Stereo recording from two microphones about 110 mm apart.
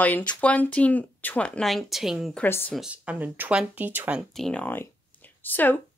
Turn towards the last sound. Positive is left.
turn(degrees=15)  # may be behind; listen again after turning